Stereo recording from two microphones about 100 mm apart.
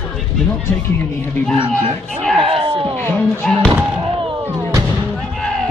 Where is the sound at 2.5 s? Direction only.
70° right (ahead or behind).